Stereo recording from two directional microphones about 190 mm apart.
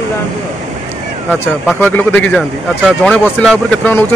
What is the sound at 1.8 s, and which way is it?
Speech, 10° left (ahead or behind).